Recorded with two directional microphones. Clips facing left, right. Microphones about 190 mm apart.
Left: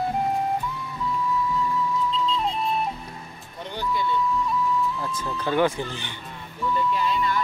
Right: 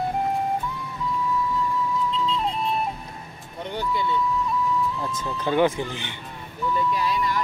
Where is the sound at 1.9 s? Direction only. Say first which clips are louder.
Even; centre (ahead or behind).